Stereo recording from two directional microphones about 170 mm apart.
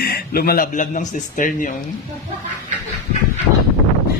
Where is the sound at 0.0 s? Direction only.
65° left (ahead or behind).